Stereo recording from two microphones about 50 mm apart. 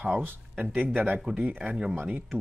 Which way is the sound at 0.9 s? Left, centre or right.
Right.